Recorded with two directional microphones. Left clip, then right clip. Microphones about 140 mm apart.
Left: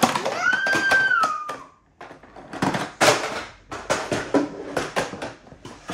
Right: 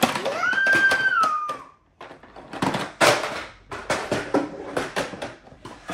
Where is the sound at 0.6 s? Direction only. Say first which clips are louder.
Right 3 dB; 25° left (ahead or behind).